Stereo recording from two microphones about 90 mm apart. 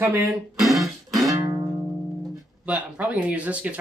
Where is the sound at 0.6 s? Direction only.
Centre (ahead or behind).